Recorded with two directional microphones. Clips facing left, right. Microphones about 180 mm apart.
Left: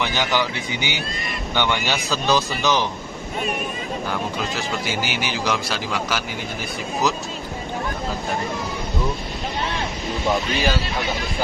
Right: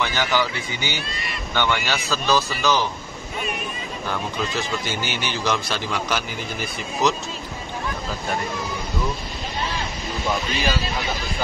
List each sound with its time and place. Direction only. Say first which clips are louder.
0.0 s speech: even; 20° left (ahead or behind)
4.8 s speech: left 2 dB; 10° left (ahead or behind)
10.3 s speech: left 2 dB; centre (ahead or behind)